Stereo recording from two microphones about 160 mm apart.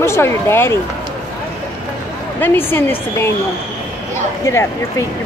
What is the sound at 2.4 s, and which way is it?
Speech, 15° left (ahead or behind).